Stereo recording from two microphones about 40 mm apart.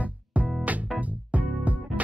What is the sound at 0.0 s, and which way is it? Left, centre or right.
Music, right.